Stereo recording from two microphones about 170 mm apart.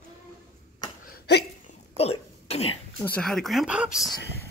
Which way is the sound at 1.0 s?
70° left (ahead or behind).